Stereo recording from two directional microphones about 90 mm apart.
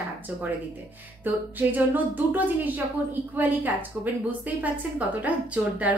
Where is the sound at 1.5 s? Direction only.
20° right (ahead or behind).